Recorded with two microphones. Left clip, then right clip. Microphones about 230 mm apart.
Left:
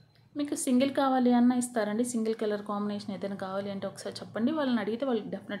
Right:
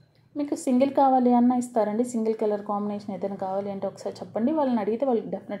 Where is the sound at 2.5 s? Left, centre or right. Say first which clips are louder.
Right 6 dB; centre.